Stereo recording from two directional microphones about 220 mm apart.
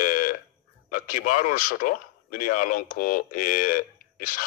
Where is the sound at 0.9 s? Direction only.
40° left (ahead or behind).